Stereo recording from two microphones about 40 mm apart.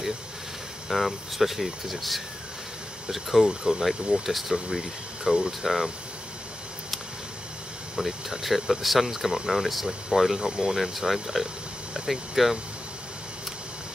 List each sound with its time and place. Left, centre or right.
0.8 s speech: centre
3.4 s speech: centre
3.8 s speech: centre
4.6 s speech: centre
8.0 s speech: centre
10.4 s speech: centre
10.7 s speech: centre